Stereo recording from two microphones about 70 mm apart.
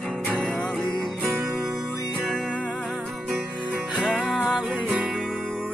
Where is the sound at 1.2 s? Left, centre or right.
Centre.